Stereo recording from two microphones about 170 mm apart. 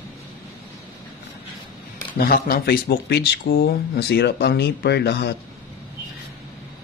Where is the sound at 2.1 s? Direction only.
65° left (ahead or behind).